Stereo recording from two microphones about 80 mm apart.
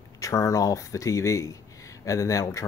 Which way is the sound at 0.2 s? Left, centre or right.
Left.